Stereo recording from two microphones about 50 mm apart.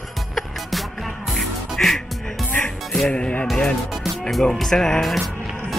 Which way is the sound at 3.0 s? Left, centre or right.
Left.